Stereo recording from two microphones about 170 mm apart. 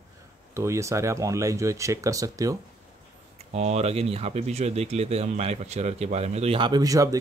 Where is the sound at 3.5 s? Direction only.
40° right (ahead or behind).